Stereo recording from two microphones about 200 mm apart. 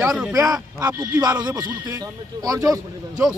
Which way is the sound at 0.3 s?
15° right (ahead or behind).